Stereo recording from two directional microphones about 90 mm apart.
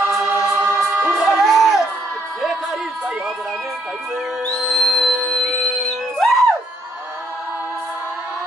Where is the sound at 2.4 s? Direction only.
5° right (ahead or behind).